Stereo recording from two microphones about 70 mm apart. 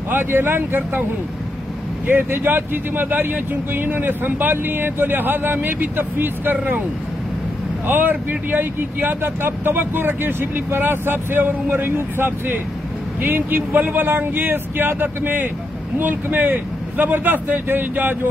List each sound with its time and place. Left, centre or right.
0.1 s speech: right
2.0 s speech: right
7.8 s speech: right